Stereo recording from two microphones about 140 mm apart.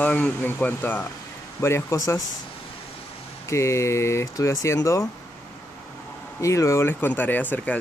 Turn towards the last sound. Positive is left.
turn(degrees=10)  # may be behind; listen again after turning